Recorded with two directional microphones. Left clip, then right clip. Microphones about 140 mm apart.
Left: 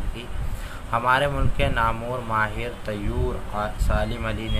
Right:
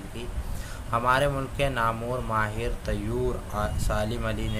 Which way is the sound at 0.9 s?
40° right (ahead or behind).